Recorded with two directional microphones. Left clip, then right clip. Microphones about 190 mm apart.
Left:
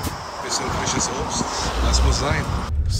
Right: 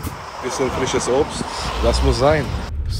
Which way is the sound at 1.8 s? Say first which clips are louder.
Right 11 dB; centre (ahead or behind).